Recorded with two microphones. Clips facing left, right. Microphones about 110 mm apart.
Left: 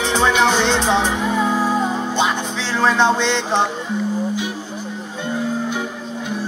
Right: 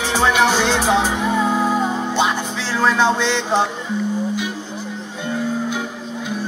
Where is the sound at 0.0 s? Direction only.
5° right (ahead or behind).